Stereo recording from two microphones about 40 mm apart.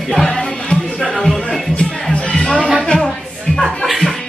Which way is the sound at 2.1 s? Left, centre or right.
Left.